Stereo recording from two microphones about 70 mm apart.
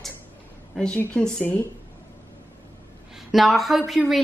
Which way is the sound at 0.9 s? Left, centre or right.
Centre.